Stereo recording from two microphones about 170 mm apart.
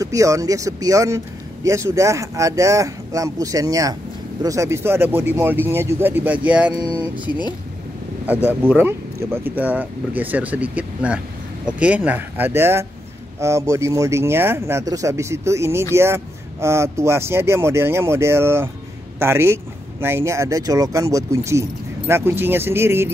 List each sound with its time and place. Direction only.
0.0 s speech: 20° right (ahead or behind)